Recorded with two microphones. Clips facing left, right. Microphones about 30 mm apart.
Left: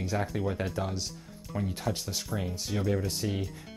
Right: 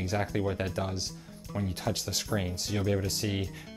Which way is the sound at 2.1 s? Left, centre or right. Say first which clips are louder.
Right 2 dB; right.